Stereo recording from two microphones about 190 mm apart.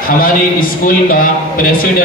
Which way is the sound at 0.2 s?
50° left (ahead or behind).